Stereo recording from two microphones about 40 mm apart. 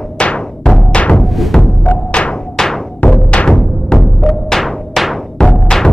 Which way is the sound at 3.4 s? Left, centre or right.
Left.